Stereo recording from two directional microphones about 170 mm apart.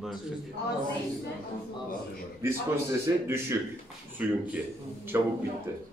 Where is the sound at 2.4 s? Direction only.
15° right (ahead or behind).